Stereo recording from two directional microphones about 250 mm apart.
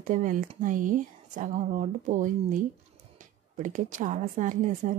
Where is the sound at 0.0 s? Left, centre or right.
Right.